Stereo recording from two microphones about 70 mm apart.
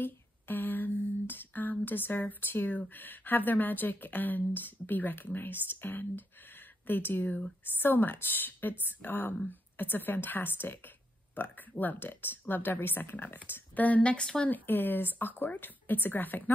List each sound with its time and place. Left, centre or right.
0.0 s a sound: left
2.8 s speech: left
14.5 s speech: left